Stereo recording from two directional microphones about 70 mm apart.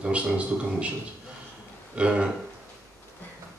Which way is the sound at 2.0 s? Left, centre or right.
Centre.